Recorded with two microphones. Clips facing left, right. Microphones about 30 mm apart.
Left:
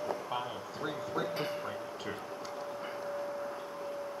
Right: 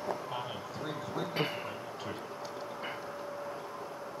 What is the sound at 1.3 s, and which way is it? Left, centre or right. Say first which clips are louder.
Speech: right 2 dB; right.